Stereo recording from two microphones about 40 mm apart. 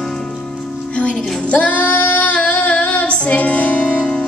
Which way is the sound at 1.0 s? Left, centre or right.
Left.